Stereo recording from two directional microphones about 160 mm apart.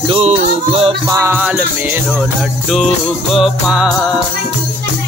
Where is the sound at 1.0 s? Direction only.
20° right (ahead or behind).